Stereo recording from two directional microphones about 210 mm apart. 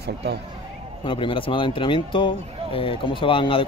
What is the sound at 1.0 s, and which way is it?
Speech, 25° left (ahead or behind).